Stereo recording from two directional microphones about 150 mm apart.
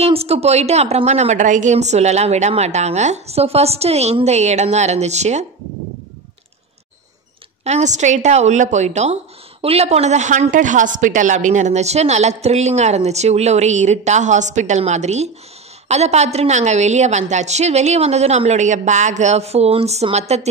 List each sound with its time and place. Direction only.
0.0 s a woman's voice: 45° right (ahead or behind)
7.6 s a woman's voice: 50° right (ahead or behind)